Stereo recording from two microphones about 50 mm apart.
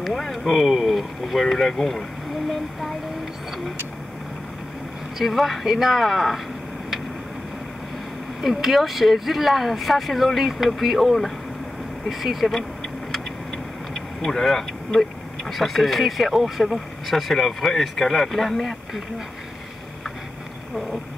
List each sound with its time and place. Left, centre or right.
0.0 s speech: centre
5.2 s speech: centre
8.4 s speech: centre
13.9 s speech: centre